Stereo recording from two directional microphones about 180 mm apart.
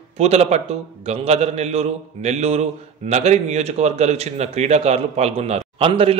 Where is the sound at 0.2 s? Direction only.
35° right (ahead or behind).